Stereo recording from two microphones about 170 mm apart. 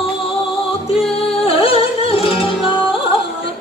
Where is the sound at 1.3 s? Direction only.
35° left (ahead or behind).